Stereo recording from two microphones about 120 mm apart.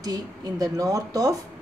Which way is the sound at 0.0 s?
30° right (ahead or behind).